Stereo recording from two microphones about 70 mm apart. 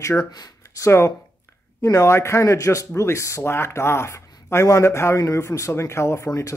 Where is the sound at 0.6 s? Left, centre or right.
Left.